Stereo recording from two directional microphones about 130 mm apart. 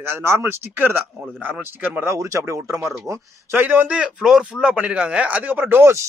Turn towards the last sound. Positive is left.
turn(degrees=-15)  # may be behind; listen again after turning